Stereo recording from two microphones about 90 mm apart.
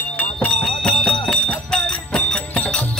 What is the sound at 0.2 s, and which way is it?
Music, 15° left (ahead or behind).